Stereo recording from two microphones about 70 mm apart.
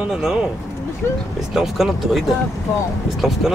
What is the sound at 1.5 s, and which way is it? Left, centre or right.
Speech, centre.